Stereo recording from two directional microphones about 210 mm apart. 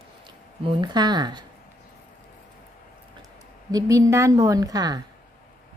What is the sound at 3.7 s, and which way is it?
A woman's voice, 15° right (ahead or behind).